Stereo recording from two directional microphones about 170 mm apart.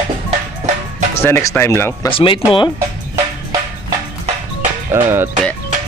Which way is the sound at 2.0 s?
30° left (ahead or behind).